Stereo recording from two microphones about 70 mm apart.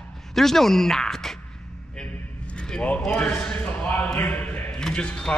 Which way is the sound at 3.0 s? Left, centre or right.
Centre.